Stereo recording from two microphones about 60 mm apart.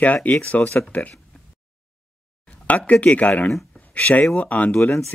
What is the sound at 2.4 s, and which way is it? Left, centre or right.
Speech, left.